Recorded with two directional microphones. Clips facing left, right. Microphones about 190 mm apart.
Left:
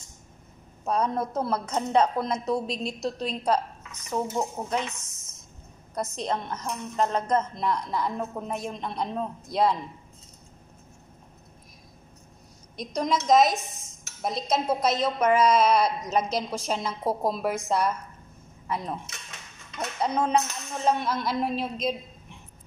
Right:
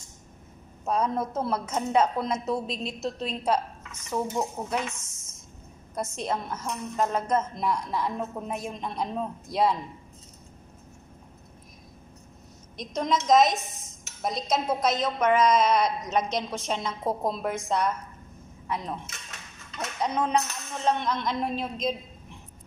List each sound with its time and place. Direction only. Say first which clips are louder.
0.8 s a woman's voice: even; 5° right (ahead or behind)
4.1 s a woman's voice: even; 5° left (ahead or behind)
4.6 s a woman's voice: left 1 dB; 5° right (ahead or behind)
6.1 s a woman's voice: even; 5° right (ahead or behind)
12.7 s a woman's voice: even; centre (ahead or behind)